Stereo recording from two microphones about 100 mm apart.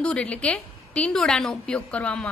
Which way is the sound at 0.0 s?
10° left (ahead or behind).